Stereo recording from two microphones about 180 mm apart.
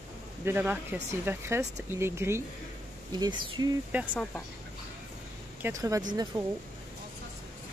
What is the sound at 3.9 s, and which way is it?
Speech, 10° right (ahead or behind).